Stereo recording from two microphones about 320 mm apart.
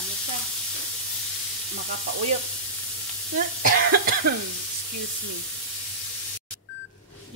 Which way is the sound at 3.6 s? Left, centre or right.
Right.